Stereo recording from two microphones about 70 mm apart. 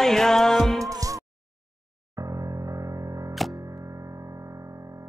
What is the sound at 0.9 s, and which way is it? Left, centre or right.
Music, right.